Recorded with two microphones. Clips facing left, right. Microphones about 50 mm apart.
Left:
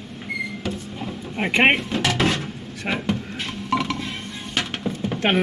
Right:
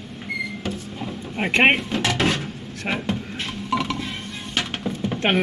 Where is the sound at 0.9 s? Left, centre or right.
Centre.